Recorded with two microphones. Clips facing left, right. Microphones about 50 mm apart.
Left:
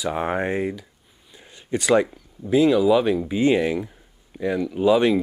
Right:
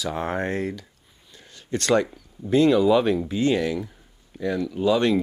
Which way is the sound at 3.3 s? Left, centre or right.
Centre.